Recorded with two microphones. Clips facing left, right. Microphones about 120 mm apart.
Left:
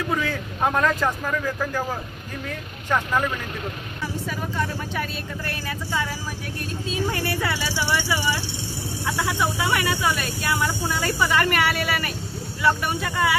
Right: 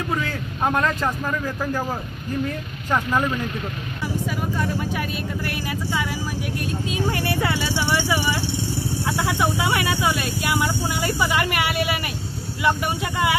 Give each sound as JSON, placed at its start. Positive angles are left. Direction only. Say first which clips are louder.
{"t": 0.3, "sound": "speech", "louder": "even", "side_deg": 0}
{"t": 1.6, "sound": "a woman's voice", "louder": "right 1 dB", "side_deg": -15}
{"t": 2.9, "sound": "a woman's voice", "louder": "right 1 dB", "side_deg": -15}
{"t": 6.9, "sound": "a woman's voice", "louder": "even", "side_deg": -25}